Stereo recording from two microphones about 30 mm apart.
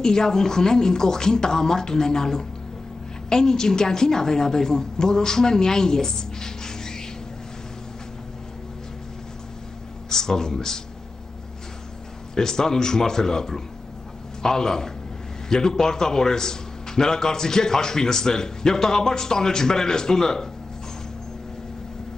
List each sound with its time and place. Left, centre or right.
0.0 s a man's voice: left
10.0 s speech: centre
12.4 s a man's voice: centre